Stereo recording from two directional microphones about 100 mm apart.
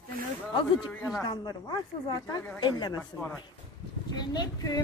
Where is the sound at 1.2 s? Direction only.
45° left (ahead or behind).